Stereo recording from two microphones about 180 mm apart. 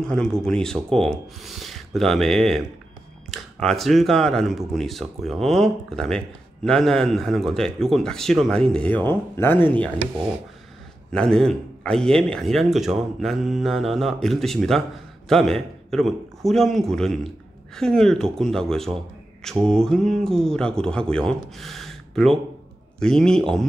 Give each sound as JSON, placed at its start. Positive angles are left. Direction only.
{"t": 0.0, "sound": "speech", "side_deg": 5}
{"t": 11.1, "sound": "speech", "side_deg": 5}